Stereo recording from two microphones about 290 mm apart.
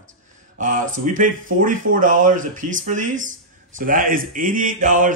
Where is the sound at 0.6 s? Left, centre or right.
Right.